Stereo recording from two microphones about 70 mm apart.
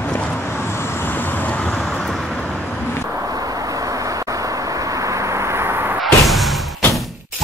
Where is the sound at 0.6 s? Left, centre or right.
Left.